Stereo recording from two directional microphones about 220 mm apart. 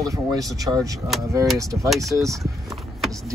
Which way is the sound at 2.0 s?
15° right (ahead or behind).